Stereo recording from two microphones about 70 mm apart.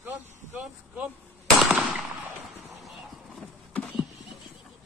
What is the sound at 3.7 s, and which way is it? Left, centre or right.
Horse, centre.